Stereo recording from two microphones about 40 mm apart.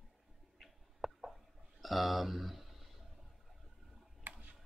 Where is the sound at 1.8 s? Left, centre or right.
Centre.